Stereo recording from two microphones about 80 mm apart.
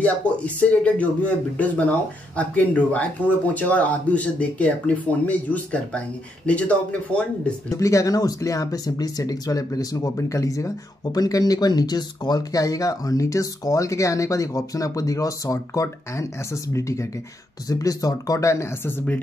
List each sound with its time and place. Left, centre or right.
0.0 s speech: centre
7.7 s speech: left